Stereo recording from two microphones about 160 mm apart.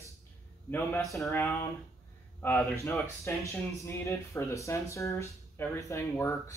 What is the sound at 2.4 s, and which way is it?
Speech, 15° left (ahead or behind).